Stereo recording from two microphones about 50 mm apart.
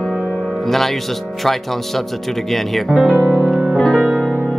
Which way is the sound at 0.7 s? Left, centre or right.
Centre.